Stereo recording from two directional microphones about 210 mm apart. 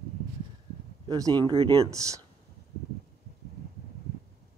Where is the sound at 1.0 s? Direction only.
20° right (ahead or behind).